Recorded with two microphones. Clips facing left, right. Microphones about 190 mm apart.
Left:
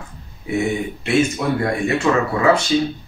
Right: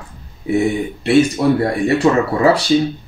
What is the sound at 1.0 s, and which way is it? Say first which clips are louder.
Speech: right 6 dB; 35° right (ahead or behind).